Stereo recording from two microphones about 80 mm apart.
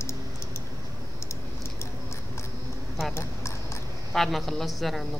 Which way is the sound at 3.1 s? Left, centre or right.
Left.